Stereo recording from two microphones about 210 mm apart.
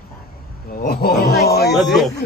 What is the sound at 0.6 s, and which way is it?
Speech, 45° left (ahead or behind).